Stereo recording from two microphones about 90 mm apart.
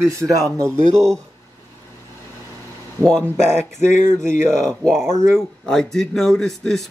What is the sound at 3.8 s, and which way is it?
Speech, 30° right (ahead or behind).